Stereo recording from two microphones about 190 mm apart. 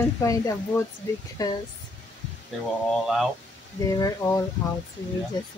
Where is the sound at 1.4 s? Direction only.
20° left (ahead or behind).